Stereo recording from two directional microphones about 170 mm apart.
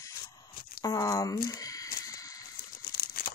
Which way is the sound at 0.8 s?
20° left (ahead or behind).